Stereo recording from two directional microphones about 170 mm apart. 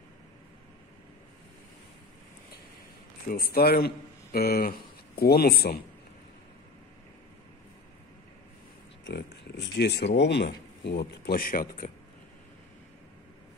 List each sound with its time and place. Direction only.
3.3 s a man's voice: 60° left (ahead or behind)
9.0 s speech: 85° left; by 12.0 s 60° left (ahead or behind)